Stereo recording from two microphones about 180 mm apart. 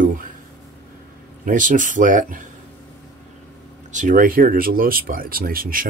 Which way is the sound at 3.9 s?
45° right (ahead or behind).